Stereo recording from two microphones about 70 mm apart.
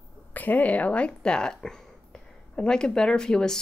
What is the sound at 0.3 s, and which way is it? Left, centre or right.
Speech, left.